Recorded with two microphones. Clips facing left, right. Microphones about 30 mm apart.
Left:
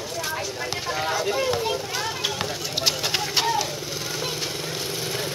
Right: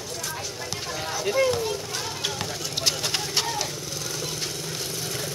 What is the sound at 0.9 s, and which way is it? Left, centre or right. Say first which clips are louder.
Speech: left 2 dB; centre.